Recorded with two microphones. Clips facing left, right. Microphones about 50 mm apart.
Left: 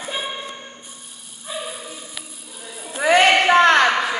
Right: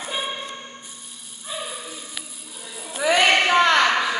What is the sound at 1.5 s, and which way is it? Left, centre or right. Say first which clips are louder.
Bow-wow: left 2 dB; centre.